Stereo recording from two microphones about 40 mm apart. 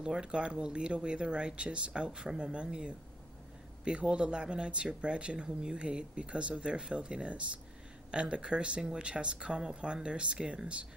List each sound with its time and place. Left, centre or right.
0.0 s speech: right